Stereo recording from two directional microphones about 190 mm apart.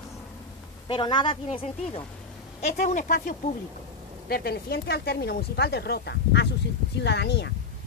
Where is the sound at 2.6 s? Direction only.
40° left (ahead or behind).